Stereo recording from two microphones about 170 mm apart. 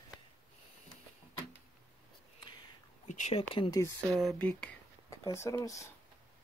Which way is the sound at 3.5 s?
30° left (ahead or behind).